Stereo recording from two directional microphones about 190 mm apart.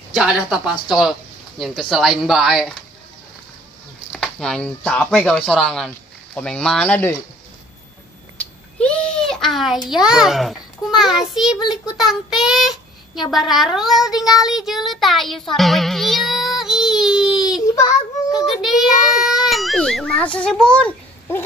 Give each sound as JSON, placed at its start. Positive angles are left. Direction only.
{"t": 0.1, "sound": "speech", "side_deg": -5}
{"t": 4.1, "sound": "speech", "side_deg": 5}
{"t": 8.4, "sound": "a sound", "side_deg": 5}
{"t": 9.8, "sound": "a child's voice", "side_deg": -5}